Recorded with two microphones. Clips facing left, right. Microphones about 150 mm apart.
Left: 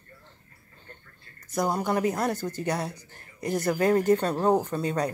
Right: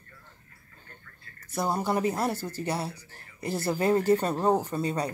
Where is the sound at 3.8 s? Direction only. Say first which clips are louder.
Left 1 dB; 10° right (ahead or behind).